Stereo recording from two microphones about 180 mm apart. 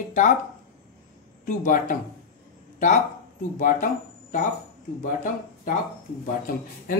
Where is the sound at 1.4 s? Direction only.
45° left (ahead or behind).